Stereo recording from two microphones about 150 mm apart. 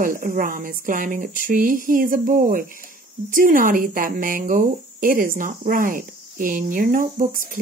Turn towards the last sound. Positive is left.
turn(degrees=-65)  # may be behind; listen again after turning